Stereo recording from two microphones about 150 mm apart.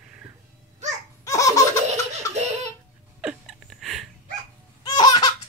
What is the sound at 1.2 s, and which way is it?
Laughter, 20° left (ahead or behind).